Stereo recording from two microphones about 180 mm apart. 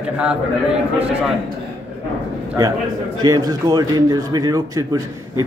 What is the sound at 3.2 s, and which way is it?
A man's voice, 20° right (ahead or behind).